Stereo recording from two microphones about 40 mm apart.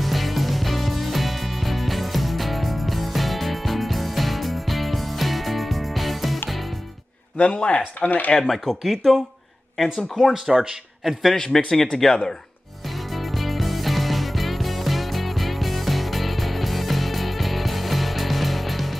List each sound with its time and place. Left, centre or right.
0.0 s music: centre
7.3 s speech: left
8.4 s speech: centre
10.5 s speech: centre
11.3 s a man's voice: centre
12.8 s music: centre